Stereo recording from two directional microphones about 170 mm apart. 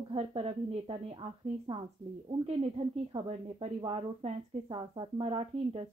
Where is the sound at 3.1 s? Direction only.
35° right (ahead or behind).